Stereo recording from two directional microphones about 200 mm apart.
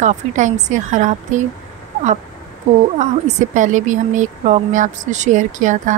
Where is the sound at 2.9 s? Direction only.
35° right (ahead or behind).